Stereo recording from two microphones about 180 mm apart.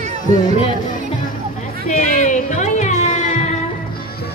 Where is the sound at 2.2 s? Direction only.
40° left (ahead or behind).